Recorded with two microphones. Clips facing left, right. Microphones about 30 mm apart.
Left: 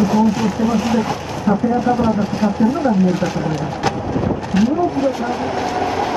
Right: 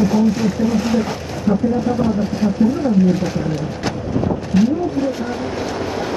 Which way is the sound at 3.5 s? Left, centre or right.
Centre.